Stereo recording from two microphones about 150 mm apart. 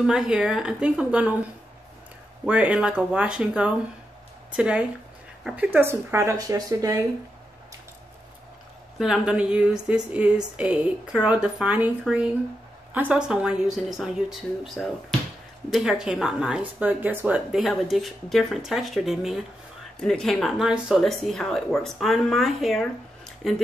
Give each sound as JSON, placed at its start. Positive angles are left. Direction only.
{"t": 0.0, "sound": "speech", "side_deg": -5}
{"t": 2.4, "sound": "a woman's voice", "side_deg": -10}
{"t": 8.9, "sound": "a woman's voice", "side_deg": -5}